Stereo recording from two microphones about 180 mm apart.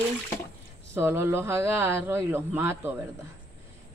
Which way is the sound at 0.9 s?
15° right (ahead or behind).